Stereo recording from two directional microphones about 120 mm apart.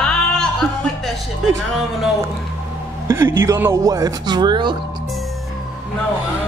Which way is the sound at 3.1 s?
20° right (ahead or behind).